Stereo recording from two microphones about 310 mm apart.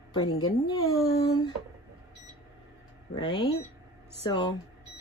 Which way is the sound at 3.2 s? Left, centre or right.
Centre.